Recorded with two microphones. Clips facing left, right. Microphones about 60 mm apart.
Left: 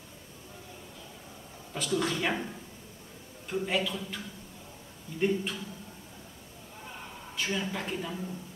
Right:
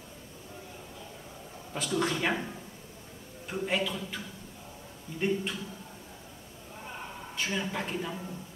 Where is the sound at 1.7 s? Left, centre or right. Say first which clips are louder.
Even; centre.